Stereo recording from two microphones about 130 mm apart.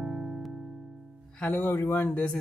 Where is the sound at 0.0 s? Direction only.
5° right (ahead or behind).